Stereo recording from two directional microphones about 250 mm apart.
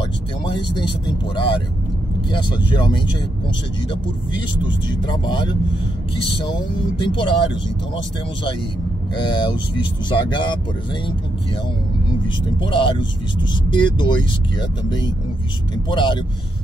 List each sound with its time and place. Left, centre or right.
0.5 s speech: centre
4.8 s speech: centre
7.0 s speech: centre
9.1 s speech: centre
12.5 s speech: centre
15.9 s speech: centre